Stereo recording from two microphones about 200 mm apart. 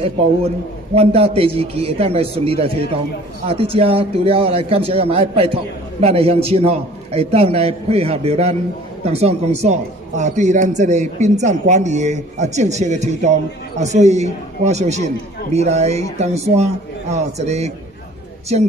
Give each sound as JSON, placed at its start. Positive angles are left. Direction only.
{"t": 0.9, "sound": "a man's voice", "side_deg": -30}